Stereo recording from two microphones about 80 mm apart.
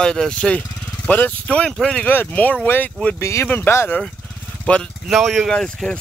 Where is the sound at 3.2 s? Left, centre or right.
Left.